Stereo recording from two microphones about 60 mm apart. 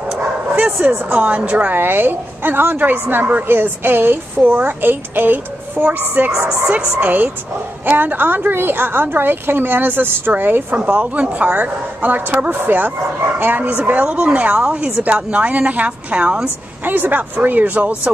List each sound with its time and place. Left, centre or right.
0.7 s a woman's voice: right
16.8 s a woman's voice: right